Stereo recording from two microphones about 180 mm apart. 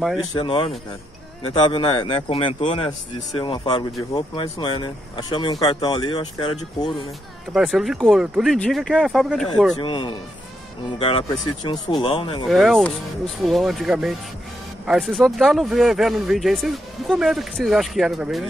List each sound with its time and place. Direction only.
0.4 s speech: 30° left (ahead or behind)
7.5 s speech: centre (ahead or behind)
9.8 s speech: 30° left (ahead or behind)
12.4 s speech: centre (ahead or behind)